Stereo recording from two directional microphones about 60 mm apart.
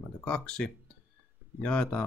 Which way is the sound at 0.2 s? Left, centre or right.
Centre.